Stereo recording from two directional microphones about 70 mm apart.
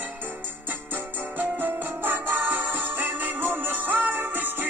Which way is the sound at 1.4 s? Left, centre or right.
Right.